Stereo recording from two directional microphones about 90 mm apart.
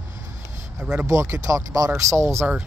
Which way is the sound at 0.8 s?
15° right (ahead or behind).